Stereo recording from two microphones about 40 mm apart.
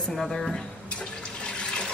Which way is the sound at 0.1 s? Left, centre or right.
Centre.